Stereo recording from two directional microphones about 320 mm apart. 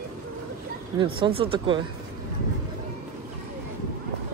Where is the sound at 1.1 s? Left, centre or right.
Centre.